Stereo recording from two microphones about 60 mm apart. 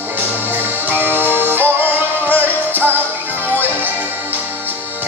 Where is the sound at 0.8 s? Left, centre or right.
Right.